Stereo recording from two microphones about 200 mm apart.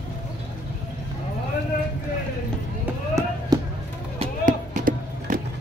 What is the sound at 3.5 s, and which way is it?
Basketball bounce, 20° right (ahead or behind).